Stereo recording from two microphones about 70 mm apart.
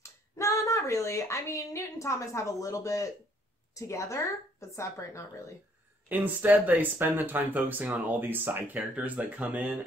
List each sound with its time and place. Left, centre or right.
0.0 s speech: left
6.0 s speech: right